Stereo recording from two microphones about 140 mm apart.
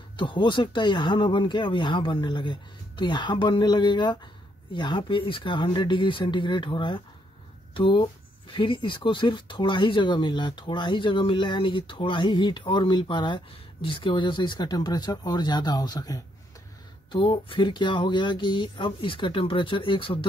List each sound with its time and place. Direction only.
0.2 s speech: 35° left (ahead or behind)